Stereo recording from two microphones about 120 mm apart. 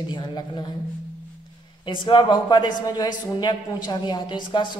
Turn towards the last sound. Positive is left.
turn(degrees=40)  # may be behind; listen again after turning